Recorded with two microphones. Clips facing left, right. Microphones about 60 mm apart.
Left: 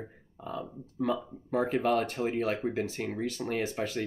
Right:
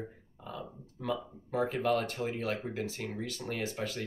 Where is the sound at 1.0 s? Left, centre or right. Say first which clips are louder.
Left 5 dB; left.